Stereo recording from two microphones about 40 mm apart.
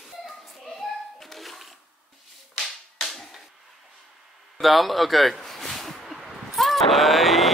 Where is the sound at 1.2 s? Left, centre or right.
Centre.